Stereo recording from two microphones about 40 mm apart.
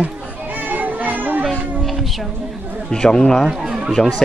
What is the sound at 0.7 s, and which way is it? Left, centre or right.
Children playing, right.